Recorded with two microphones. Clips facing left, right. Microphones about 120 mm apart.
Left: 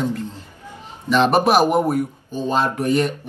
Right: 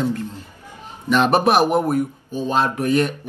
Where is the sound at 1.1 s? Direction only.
Centre (ahead or behind).